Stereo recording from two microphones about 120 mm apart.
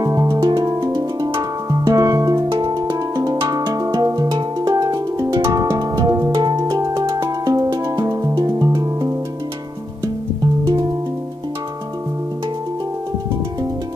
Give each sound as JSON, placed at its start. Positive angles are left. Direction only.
{"t": 0.0, "sound": "music", "side_deg": -30}
{"t": 10.6, "sound": "music", "side_deg": -40}